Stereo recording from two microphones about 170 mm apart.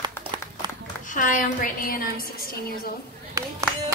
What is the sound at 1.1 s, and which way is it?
A woman's voice, 50° left (ahead or behind).